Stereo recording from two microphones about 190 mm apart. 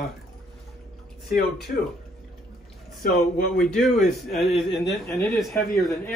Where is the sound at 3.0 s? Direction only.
50° left (ahead or behind).